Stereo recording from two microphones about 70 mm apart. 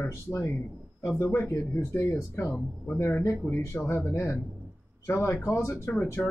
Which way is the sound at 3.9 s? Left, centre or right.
Left.